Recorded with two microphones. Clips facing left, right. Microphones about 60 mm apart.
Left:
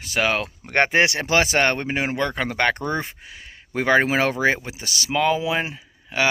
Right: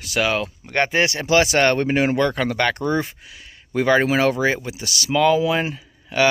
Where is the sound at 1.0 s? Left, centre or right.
Left.